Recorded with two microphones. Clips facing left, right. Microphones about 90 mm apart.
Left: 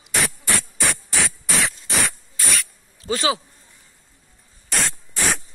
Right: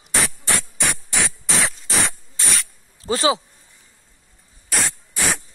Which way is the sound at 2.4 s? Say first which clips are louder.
Left 1 dB; 25° right (ahead or behind).